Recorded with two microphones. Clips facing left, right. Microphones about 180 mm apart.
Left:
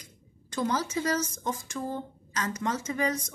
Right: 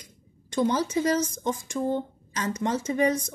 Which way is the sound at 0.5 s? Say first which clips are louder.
Right 5 dB; 25° right (ahead or behind).